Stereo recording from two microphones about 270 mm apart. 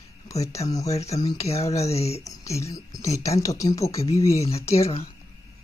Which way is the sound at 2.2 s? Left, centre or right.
Centre.